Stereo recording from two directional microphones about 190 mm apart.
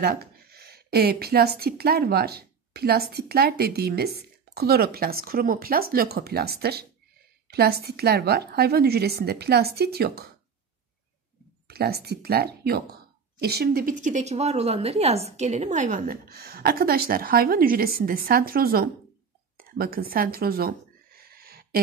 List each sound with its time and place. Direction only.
0.0 s a woman's voice: 55° right (ahead or behind)
11.6 s a woman's voice: 55° right (ahead or behind)
19.5 s neigh: 50° right (ahead or behind)